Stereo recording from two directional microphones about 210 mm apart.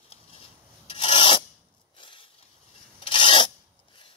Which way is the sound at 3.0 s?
25° left (ahead or behind).